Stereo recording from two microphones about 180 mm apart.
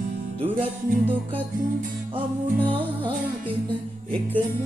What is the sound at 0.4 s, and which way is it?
Music, 30° right (ahead or behind).